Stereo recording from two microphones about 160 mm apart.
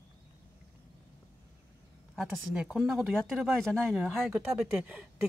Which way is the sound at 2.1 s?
5° right (ahead or behind).